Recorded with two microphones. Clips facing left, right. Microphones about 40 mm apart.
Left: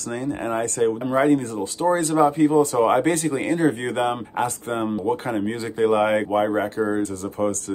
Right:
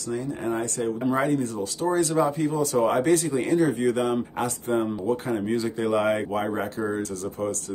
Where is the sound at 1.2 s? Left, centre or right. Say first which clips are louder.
Left 5 dB; left.